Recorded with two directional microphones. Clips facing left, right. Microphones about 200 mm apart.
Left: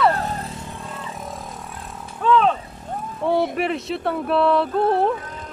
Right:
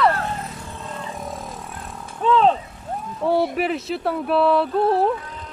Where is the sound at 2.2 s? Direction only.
30° right (ahead or behind).